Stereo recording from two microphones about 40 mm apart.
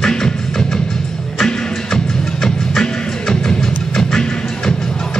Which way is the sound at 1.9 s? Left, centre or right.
Centre.